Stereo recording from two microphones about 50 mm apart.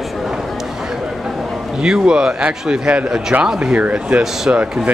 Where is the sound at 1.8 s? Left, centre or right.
Centre; by 4.6 s right.